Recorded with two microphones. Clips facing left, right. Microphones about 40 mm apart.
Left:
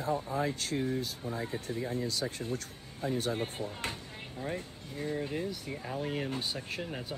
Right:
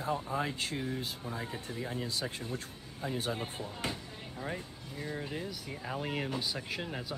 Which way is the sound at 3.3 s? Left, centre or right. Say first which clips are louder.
Left 3 dB; left.